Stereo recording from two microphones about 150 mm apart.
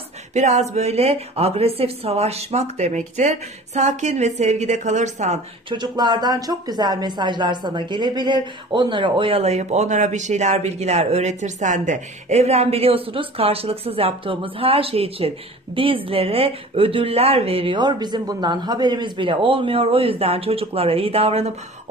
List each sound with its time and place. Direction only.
0.3 s a woman's voice: 50° right (ahead or behind)
5.7 s speech: 30° right (ahead or behind)